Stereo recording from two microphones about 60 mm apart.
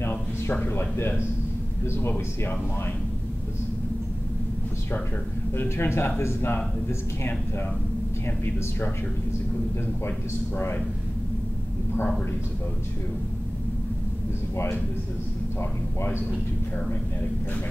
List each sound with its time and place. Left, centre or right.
0.1 s a sound: left
0.7 s speech: left
5.6 s speech: left